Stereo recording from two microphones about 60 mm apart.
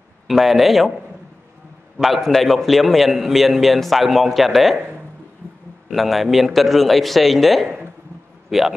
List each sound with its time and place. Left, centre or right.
0.3 s a man's voice: centre
2.0 s a man's voice: centre
5.9 s a man's voice: centre
7.6 s a sound: right
8.5 s speech: centre